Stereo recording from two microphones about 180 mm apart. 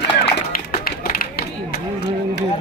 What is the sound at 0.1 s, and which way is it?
Run, 65° left (ahead or behind).